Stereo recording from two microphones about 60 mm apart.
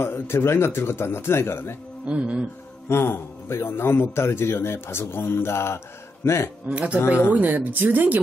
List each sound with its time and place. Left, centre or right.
0.0 s a man's voice: left
2.0 s speech: right
2.9 s a man's voice: left
6.7 s speech: right